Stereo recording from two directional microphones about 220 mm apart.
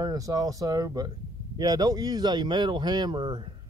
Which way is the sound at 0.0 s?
15° right (ahead or behind).